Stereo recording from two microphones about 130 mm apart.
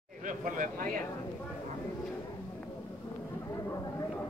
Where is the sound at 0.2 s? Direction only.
90° right.